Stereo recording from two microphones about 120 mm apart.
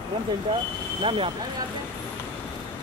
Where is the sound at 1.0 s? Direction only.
45° right (ahead or behind).